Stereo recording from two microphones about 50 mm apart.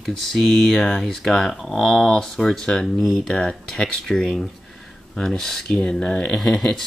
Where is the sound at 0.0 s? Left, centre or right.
Centre.